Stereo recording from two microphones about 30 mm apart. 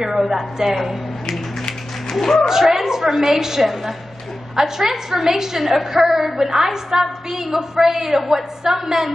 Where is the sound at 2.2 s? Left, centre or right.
Centre.